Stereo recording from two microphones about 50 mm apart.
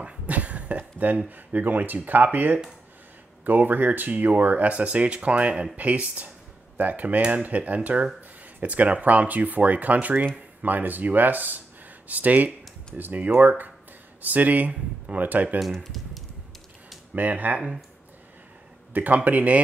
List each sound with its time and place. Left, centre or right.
0.0 s speech: right
15.8 s typing: centre
17.1 s speech: right
18.9 s speech: right